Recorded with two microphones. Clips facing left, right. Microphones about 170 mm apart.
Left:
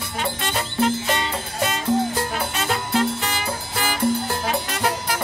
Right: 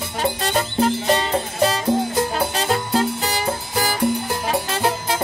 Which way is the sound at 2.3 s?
35° right (ahead or behind).